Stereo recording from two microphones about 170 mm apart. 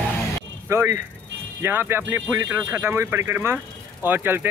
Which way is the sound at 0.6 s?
15° right (ahead or behind).